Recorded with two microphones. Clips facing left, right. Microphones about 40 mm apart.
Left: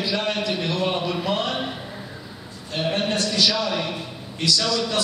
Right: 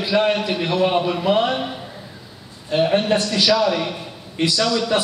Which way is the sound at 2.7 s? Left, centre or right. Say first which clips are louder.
Right 7 dB; centre.